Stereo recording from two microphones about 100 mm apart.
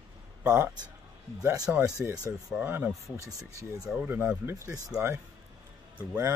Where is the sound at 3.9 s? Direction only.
20° right (ahead or behind).